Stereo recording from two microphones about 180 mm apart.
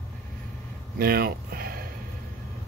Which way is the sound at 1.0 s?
55° right (ahead or behind).